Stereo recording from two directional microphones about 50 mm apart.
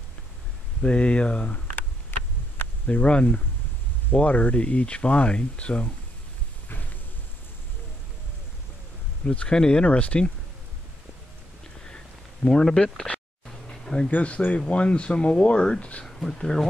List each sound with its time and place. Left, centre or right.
0.8 s speech: left
2.1 s a sound: left
2.9 s speech: left
9.2 s speech: left
12.4 s a sound: centre
14.1 s speech: left
16.1 s speech: centre